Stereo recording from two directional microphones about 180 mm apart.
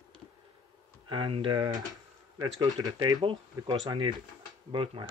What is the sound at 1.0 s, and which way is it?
Speech, 25° right (ahead or behind).